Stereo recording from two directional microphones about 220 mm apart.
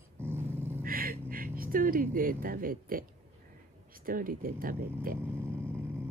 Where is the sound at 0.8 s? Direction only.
40° right (ahead or behind).